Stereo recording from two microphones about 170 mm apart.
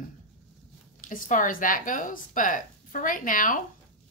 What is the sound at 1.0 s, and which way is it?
Speech, 55° left (ahead or behind).